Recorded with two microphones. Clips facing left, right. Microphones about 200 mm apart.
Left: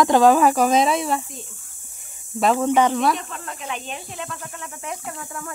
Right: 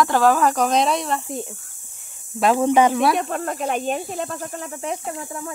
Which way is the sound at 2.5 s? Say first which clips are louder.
Right 4 dB; 15° right (ahead or behind).